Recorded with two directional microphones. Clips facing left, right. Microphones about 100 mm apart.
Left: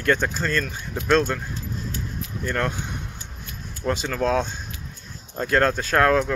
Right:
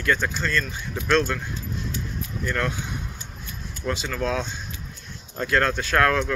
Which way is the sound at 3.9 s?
45° left (ahead or behind).